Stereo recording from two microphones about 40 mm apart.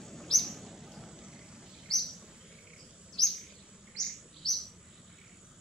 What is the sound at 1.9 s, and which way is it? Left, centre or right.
Bird vocalization, centre.